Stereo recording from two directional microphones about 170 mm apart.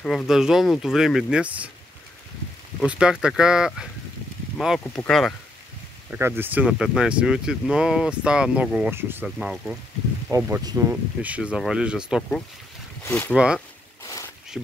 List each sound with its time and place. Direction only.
0.0 s speech: 5° left (ahead or behind)
2.8 s speech: 5° right (ahead or behind)
6.0 s speech: 10° right (ahead or behind)
10.3 s speech: 20° right (ahead or behind); by 12.2 s 5° right (ahead or behind)
13.0 s speech: 15° left (ahead or behind)
13.3 s speech: 5° right (ahead or behind)
14.0 s a sound: 20° left (ahead or behind)